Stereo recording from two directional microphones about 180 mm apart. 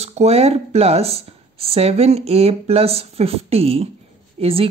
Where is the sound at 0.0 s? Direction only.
35° right (ahead or behind).